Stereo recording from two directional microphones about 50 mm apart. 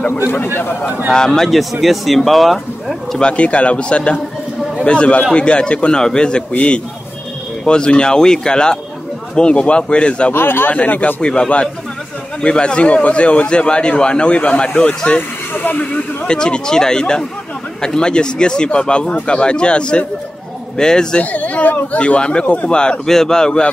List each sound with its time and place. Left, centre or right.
1.1 s speech: centre
3.2 s a man's voice: left
6.5 s a man's voice: left
7.6 s a man's voice: centre
10.3 s a man's voice: left
10.7 s a man's voice: left
15.5 s speech: left
16.3 s a man's voice: centre
21.2 s speech: left
22.0 s a man's voice: left